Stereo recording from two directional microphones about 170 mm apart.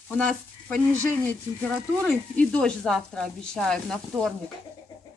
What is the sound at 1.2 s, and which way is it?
Speech, 5° left (ahead or behind).